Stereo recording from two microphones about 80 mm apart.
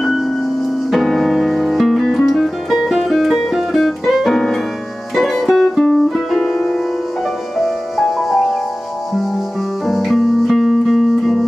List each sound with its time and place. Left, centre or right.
0.0 s music: centre
9.8 s music: centre